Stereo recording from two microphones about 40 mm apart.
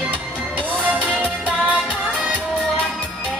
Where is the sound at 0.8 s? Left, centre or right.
Right.